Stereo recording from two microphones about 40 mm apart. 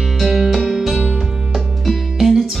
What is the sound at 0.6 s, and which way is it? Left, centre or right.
Music, centre.